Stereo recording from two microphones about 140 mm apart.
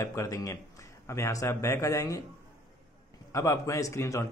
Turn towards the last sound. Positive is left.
turn(degrees=20)  # may be behind; listen again after turning